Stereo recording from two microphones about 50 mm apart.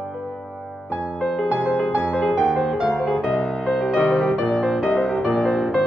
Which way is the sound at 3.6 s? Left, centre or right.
Centre.